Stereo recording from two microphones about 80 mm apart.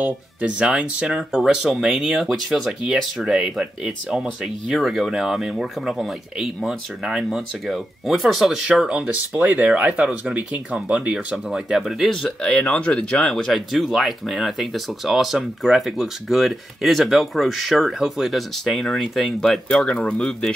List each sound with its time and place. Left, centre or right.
0.0 s speech: centre